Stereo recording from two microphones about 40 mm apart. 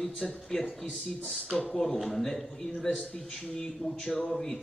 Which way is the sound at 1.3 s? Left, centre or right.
Centre.